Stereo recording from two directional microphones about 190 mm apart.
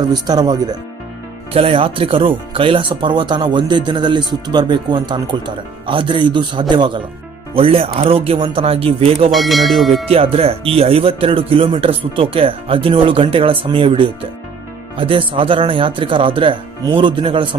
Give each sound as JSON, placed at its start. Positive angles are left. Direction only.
{"t": 0.1, "sound": "speech", "side_deg": -20}
{"t": 9.3, "sound": "speech", "side_deg": 0}
{"t": 10.0, "sound": "speech", "side_deg": -30}